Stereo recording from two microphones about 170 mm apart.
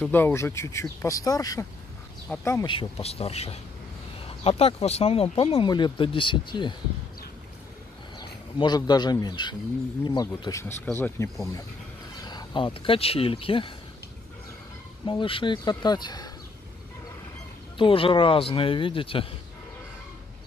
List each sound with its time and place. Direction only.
0.0 s speech: 10° left (ahead or behind)
2.3 s speech: 5° left (ahead or behind)
2.6 s speech: 30° left (ahead or behind)
8.2 s speech: 25° left (ahead or behind)
12.2 s speech: 25° left (ahead or behind)
15.0 s speech: 30° left (ahead or behind)
17.7 s speech: 30° left (ahead or behind)